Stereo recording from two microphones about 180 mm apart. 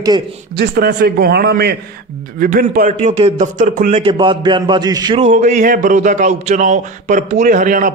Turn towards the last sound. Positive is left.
turn(degrees=-50)  # may be behind; listen again after turning